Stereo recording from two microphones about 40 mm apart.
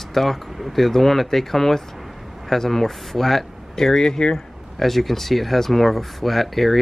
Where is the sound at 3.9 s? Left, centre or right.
Centre.